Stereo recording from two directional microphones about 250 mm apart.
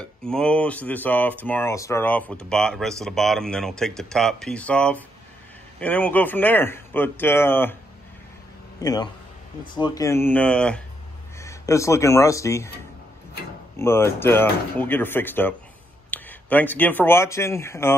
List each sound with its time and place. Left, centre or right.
0.0 s speech: centre
8.8 s speech: centre
13.7 s speech: centre